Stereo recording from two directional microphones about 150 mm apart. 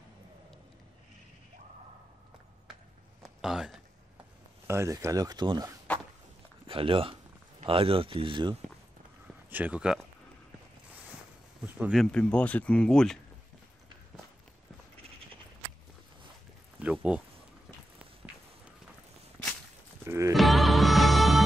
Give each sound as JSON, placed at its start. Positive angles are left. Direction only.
{"t": 3.2, "sound": "a sound", "side_deg": -5}
{"t": 4.6, "sound": "speech", "side_deg": -20}
{"t": 9.5, "sound": "speech", "side_deg": -10}
{"t": 11.9, "sound": "speech", "side_deg": 5}
{"t": 16.8, "sound": "a sound", "side_deg": -10}
{"t": 18.2, "sound": "clip-clop", "side_deg": 0}
{"t": 20.1, "sound": "music", "side_deg": -20}
{"t": 20.3, "sound": "music", "side_deg": 0}